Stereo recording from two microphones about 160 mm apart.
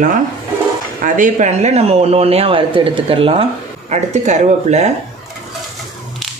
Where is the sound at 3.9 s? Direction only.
45° right (ahead or behind).